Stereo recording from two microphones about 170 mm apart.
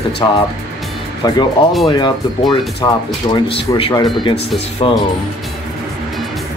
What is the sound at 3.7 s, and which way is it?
Speech, 30° left (ahead or behind).